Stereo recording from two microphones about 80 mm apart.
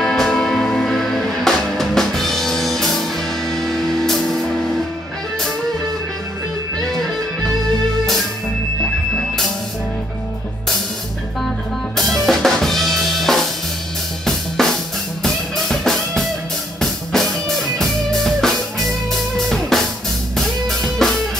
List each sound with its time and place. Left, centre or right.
0.0 s music: centre
6.9 s music: centre
12.0 s drum kit: centre
14.6 s drum: centre
15.2 s music: centre